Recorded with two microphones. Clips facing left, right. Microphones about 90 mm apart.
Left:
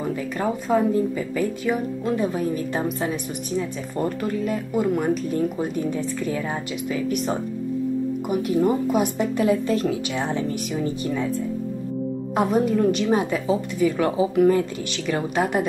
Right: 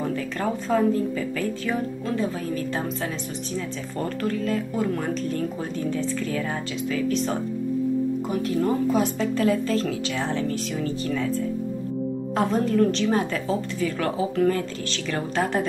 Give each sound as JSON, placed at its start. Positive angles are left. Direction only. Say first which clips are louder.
{"t": 0.0, "sound": "speech", "louder": "left 1 dB", "side_deg": 10}
{"t": 12.4, "sound": "speech", "louder": "left 1 dB", "side_deg": 15}